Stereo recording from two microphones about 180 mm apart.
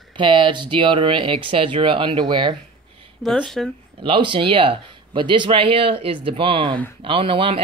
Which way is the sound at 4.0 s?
30° right (ahead or behind).